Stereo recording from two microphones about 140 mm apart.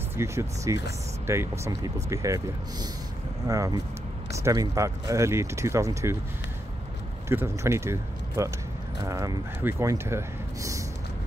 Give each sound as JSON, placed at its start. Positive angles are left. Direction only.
{"t": 0.1, "sound": "speech", "side_deg": -20}
{"t": 7.2, "sound": "speech", "side_deg": -20}